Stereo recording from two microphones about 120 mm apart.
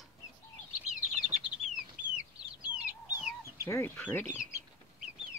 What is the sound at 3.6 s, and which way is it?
Speech, 25° left (ahead or behind).